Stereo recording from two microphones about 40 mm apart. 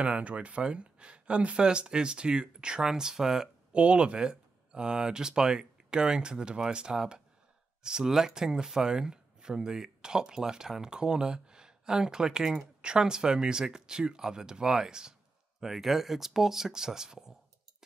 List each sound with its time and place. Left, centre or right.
0.0 s speech: right; by 3.4 s centre
3.7 s speech: right
15.6 s speech: centre